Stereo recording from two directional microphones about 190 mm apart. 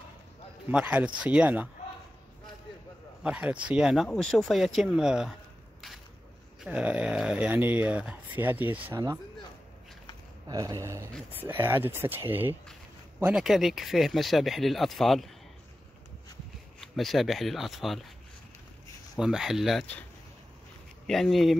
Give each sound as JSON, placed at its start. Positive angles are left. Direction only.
{"t": 0.7, "sound": "speech", "side_deg": -10}
{"t": 3.3, "sound": "speech", "side_deg": -5}
{"t": 6.6, "sound": "speech", "side_deg": -5}
{"t": 10.5, "sound": "speech", "side_deg": -20}
{"t": 16.8, "sound": "speech", "side_deg": 0}
{"t": 19.1, "sound": "speech", "side_deg": 0}
{"t": 21.1, "sound": "speech", "side_deg": 0}